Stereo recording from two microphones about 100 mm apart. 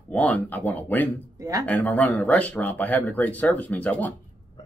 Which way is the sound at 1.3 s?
35° right (ahead or behind).